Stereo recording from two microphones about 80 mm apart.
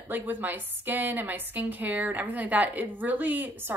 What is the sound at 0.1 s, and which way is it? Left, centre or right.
A woman's voice, right.